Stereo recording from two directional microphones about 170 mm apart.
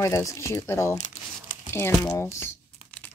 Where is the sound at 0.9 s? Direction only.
45° left (ahead or behind).